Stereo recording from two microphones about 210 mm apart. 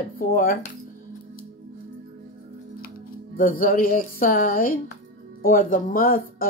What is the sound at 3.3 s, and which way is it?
Speech, 40° left (ahead or behind).